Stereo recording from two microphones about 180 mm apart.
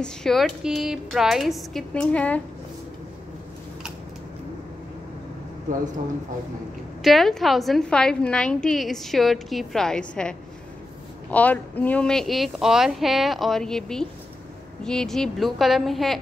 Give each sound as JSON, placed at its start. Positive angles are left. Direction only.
{"t": 0.0, "sound": "a woman's voice", "side_deg": 0}
{"t": 7.0, "sound": "a woman's voice", "side_deg": 0}